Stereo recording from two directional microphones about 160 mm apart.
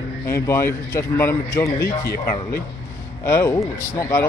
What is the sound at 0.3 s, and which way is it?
Speech, 15° left (ahead or behind).